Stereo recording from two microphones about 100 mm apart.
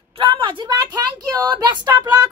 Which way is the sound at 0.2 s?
55° right (ahead or behind).